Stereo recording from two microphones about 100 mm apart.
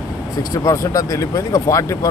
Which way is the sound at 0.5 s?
35° left (ahead or behind).